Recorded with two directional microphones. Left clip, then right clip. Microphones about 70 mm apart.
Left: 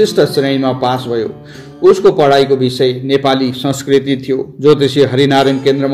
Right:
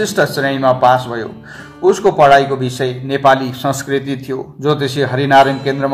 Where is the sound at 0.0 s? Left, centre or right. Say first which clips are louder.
Left 4 dB; left.